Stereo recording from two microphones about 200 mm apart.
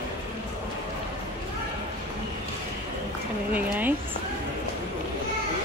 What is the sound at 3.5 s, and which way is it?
Speech, 5° right (ahead or behind).